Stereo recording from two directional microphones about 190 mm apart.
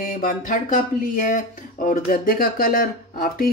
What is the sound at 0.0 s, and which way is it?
Speech, 45° left (ahead or behind).